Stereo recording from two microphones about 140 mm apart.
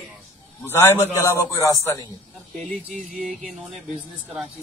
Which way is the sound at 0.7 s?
20° left (ahead or behind).